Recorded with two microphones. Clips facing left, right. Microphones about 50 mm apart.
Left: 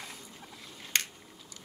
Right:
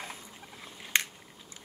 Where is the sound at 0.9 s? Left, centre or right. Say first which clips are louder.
Right 3 dB; centre.